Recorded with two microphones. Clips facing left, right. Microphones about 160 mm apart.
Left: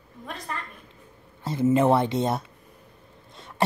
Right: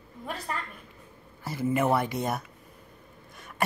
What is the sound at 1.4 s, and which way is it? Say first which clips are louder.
Speech: left 6 dB; 25° left (ahead or behind).